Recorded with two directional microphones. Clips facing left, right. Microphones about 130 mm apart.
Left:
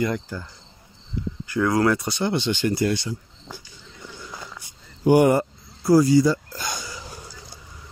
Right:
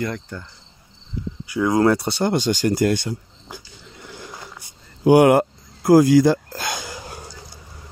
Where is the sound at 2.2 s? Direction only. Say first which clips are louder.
Right 3 dB; 40° right (ahead or behind).